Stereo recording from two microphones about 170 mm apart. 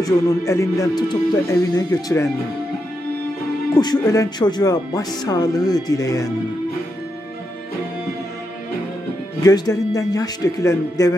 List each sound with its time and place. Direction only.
0.0 s speech: 15° left (ahead or behind)
3.7 s speech: 25° left (ahead or behind)
9.4 s speech: 20° left (ahead or behind)